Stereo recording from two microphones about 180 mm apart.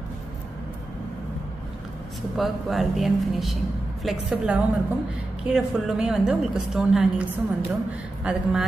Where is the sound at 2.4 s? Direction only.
Centre (ahead or behind).